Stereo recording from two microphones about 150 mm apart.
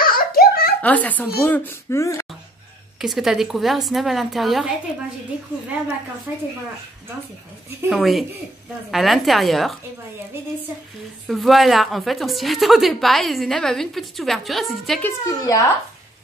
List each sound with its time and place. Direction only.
0.0 s giggle: 85° left
0.8 s speech: 10° left (ahead or behind)
3.0 s a woman's voice: centre (ahead or behind)
7.9 s a woman's voice: centre (ahead or behind)
11.2 s a woman's voice: centre (ahead or behind)
15.0 s speech: 20° left (ahead or behind)